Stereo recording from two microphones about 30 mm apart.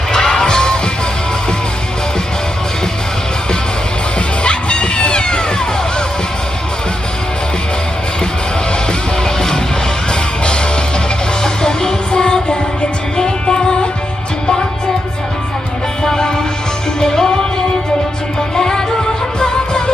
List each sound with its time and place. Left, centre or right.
0.1 s music: left
4.4 s music: left
11.4 s music: left
16.0 s music: left